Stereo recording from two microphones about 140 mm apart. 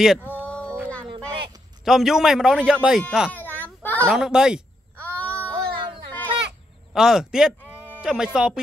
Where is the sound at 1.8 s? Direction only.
Centre (ahead or behind).